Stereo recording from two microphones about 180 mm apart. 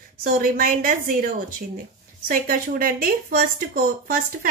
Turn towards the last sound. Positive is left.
turn(degrees=-55)  # may be behind; listen again after turning